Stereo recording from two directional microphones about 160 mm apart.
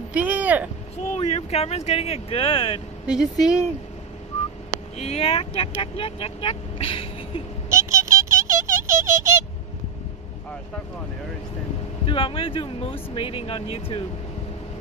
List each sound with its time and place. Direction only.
0.1 s speech: 10° right (ahead or behind)
1.0 s speech: 40° left (ahead or behind)
3.1 s speech: 5° right (ahead or behind)
4.3 s whistling: 40° left (ahead or behind)
4.9 s speech: 40° left (ahead or behind)
7.7 s music: 20° right (ahead or behind)
12.1 s speech: 35° left (ahead or behind)